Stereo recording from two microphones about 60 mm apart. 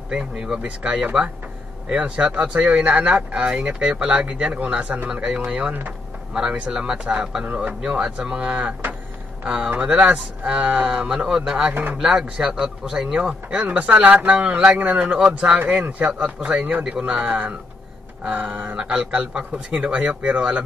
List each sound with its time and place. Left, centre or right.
0.1 s a man's voice: centre
5.1 s a man's voice: centre
8.0 s a man's voice: centre
11.7 s speech: right
12.0 s a man's voice: centre